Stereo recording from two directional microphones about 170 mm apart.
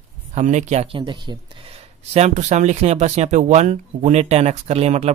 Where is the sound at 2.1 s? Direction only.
40° right (ahead or behind).